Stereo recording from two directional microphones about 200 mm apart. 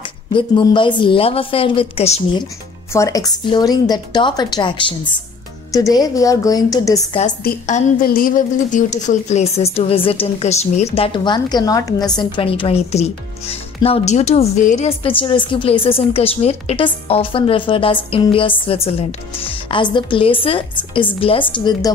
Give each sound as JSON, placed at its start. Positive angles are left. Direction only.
{"t": 0.3, "sound": "a woman's voice", "side_deg": 25}
{"t": 2.9, "sound": "a woman's voice", "side_deg": 15}
{"t": 7.4, "sound": "a woman's voice", "side_deg": 40}